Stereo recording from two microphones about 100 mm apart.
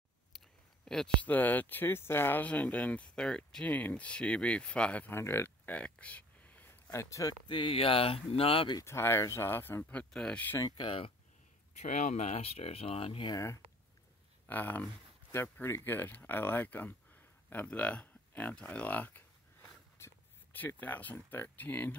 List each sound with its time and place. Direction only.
0.8 s speech: 5° left (ahead or behind); by 5.8 s 25° left (ahead or behind)
5.8 s a sound: 10° left (ahead or behind); by 7.3 s 30° left (ahead or behind)
7.4 s speech: 55° left (ahead or behind); by 8.6 s 70° left (ahead or behind)
8.8 s speech: 25° left (ahead or behind)
10.6 s speech: 55° left (ahead or behind)
12.2 s speech: 90° left; by 13.3 s 70° left (ahead or behind)
14.4 s speech: 20° left (ahead or behind)
20.0 s a sound: 20° left (ahead or behind)
20.8 s speech: 15° left (ahead or behind)